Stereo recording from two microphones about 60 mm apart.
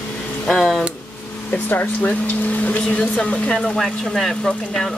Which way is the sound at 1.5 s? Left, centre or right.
Left.